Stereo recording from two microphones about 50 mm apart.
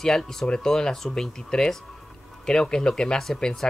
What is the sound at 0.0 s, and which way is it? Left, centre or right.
Speech, centre.